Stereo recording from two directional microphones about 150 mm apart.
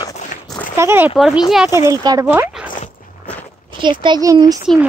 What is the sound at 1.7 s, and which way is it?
Speech, 25° right (ahead or behind).